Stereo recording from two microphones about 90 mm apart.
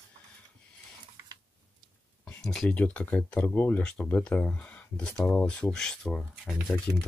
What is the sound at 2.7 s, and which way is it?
Speech, 15° left (ahead or behind).